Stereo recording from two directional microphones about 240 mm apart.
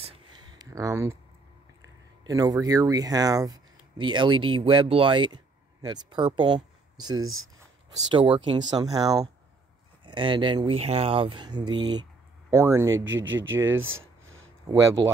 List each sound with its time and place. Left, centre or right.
0.0 s a sound: centre
2.2 s speech: centre
7.2 s speech: right
8.1 s speech: right
12.9 s speech: right